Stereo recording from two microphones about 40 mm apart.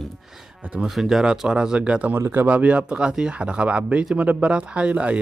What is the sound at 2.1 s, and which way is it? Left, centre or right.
Speech, right.